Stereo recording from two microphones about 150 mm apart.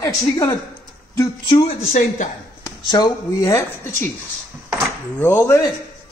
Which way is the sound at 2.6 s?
25° left (ahead or behind).